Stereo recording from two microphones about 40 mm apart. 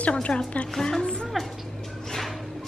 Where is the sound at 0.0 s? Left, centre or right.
Left.